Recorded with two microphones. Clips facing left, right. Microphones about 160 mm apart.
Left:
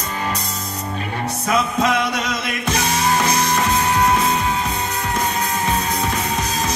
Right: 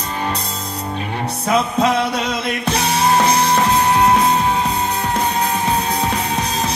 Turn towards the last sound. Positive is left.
turn(degrees=-30)  # may be behind; listen again after turning